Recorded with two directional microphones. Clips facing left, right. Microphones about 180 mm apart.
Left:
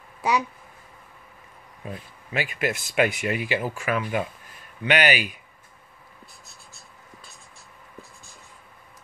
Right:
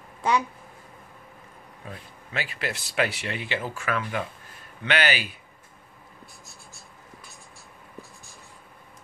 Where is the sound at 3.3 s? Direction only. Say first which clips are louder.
Left 5 dB; 10° left (ahead or behind).